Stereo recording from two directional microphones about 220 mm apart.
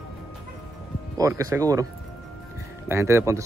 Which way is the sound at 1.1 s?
15° right (ahead or behind).